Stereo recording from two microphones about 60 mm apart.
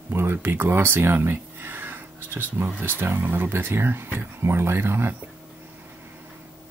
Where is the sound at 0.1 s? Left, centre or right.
Right.